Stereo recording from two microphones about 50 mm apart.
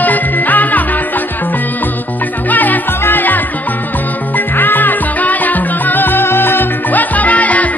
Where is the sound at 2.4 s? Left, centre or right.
Left.